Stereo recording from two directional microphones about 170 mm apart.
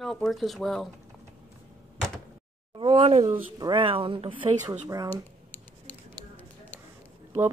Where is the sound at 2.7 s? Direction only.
30° right (ahead or behind).